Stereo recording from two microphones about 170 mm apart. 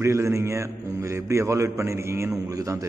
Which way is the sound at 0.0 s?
15° right (ahead or behind).